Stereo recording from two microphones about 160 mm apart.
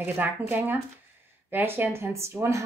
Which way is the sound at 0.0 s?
10° right (ahead or behind).